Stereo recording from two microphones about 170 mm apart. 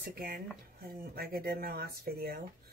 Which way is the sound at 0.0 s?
65° right (ahead or behind).